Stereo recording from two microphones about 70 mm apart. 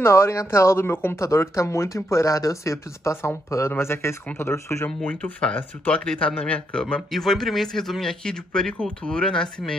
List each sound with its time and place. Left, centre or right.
0.0 s speech: left
1.2 s speech: left
5.0 s speech: centre
7.1 s speech: centre